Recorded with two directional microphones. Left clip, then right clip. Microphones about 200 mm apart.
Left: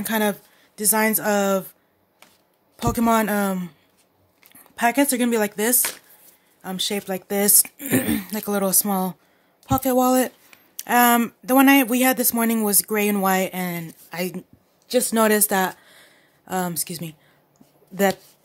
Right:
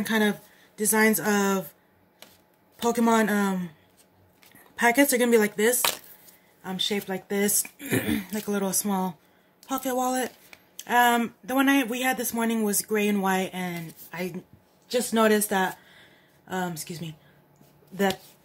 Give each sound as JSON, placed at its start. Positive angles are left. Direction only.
{"t": 0.1, "sound": "a man's voice", "side_deg": 50}
{"t": 2.8, "sound": "a man's voice", "side_deg": 40}
{"t": 4.7, "sound": "a man's voice", "side_deg": 40}